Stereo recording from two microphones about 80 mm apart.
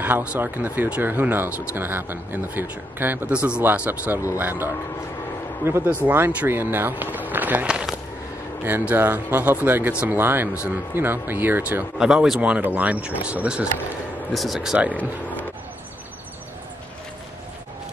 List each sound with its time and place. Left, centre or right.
0.0 s speech: centre
5.9 s speech: right
7.6 s speech: centre
8.6 s speech: right
12.0 s speech: centre
12.4 s speech: centre
14.3 s speech: centre